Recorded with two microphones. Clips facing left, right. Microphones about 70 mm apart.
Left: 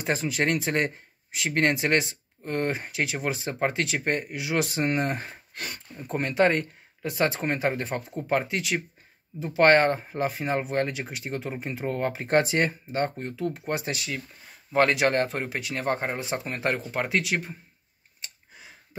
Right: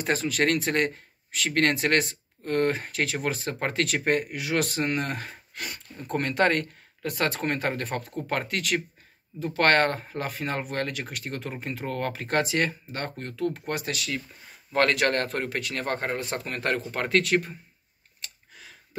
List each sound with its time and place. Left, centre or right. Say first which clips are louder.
0.0 s speech: right 1 dB; centre
4.8 s speech: left 2 dB; left
5.9 s speech: left 1 dB; centre
13.7 s speech: even; left
18.2 s a sound: even; centre